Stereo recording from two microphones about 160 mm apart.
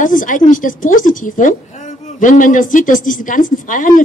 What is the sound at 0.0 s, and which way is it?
A woman's voice, 55° left (ahead or behind).